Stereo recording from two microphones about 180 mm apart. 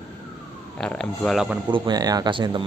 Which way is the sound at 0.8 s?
5° left (ahead or behind).